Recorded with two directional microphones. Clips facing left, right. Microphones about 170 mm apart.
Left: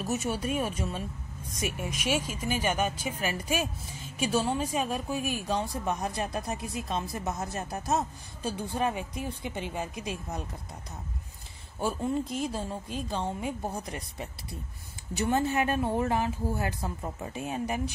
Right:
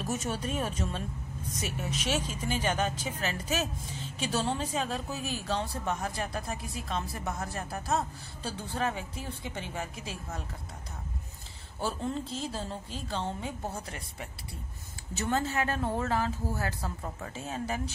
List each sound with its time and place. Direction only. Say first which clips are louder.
0.0 s speech: left 2 dB; 10° left (ahead or behind)
11.8 s speech: left 4 dB; 10° left (ahead or behind)
15.1 s speech: left 3 dB; 15° left (ahead or behind)